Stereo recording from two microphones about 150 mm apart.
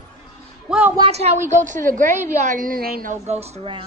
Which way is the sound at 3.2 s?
45° right (ahead or behind).